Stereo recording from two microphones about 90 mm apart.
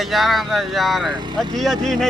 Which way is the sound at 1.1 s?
60° right (ahead or behind).